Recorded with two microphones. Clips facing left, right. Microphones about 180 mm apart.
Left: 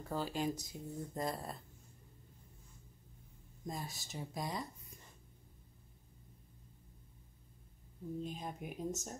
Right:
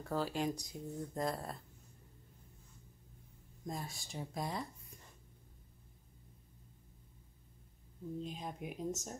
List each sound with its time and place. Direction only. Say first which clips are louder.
0.1 s speech: right 1 dB; centre (ahead or behind)
3.6 s speech: even; centre (ahead or behind)
8.2 s speech: even; centre (ahead or behind)